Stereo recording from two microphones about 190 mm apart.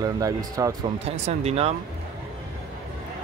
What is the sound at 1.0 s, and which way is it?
Speech, 35° right (ahead or behind).